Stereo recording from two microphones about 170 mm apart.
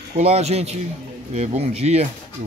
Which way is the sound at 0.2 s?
40° right (ahead or behind).